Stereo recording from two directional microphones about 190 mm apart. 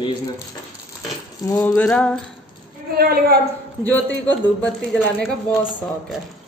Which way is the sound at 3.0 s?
55° right (ahead or behind).